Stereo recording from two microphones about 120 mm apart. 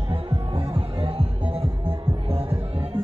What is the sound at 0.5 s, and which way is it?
Music, 50° right (ahead or behind).